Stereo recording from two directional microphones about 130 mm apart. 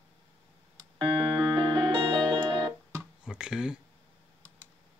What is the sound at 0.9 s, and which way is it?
Music, 35° right (ahead or behind).